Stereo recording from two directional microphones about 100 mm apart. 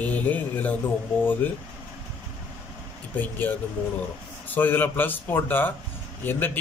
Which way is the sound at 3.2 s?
20° left (ahead or behind).